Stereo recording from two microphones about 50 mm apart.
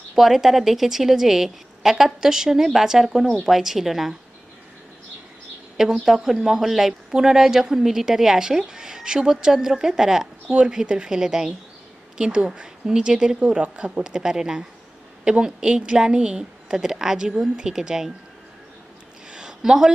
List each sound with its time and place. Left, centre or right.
0.1 s speech: centre
6.0 s speech: centre
14.2 s speech: centre
19.3 s a sound: centre